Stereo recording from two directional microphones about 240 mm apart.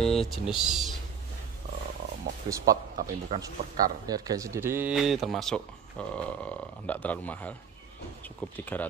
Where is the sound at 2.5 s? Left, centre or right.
Centre.